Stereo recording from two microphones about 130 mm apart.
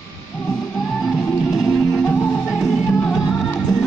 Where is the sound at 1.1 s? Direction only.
5° left (ahead or behind).